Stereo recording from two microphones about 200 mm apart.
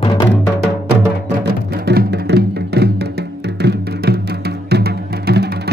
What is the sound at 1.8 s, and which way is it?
Music, 55° right (ahead or behind).